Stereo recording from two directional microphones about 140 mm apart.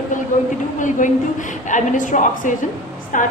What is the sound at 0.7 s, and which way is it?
A woman's voice, 65° left (ahead or behind).